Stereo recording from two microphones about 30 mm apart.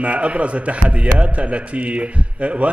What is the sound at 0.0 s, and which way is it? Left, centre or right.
A man's voice, right.